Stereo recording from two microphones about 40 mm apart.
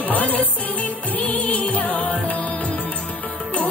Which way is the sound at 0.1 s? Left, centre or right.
Left.